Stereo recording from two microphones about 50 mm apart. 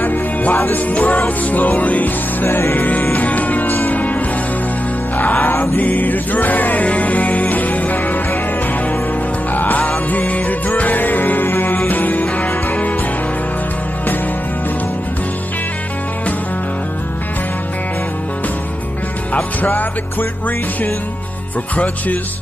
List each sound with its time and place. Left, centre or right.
0.0 s music: left
5.3 s music: left
9.5 s music: left
19.3 s music: left